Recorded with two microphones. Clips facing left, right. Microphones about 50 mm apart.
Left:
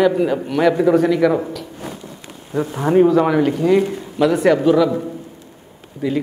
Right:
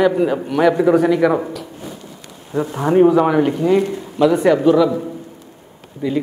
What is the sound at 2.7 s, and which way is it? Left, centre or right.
Speech, centre.